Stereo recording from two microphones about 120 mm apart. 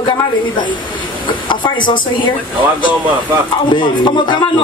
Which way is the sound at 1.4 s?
40° left (ahead or behind).